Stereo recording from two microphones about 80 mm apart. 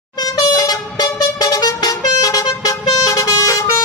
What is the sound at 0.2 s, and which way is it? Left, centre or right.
Vehicle, left.